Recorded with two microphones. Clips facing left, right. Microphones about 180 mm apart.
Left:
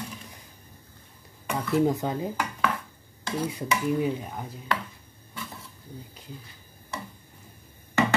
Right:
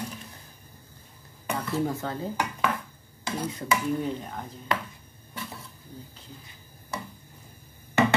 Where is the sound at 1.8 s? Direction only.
15° left (ahead or behind).